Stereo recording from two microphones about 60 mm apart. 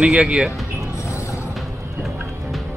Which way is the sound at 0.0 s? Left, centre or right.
Centre.